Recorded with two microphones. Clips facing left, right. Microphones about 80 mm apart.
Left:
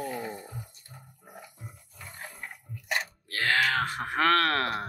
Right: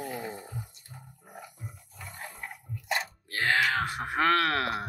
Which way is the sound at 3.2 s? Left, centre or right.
Right.